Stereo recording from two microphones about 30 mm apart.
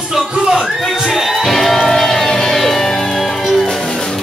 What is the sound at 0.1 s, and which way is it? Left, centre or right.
Music, centre.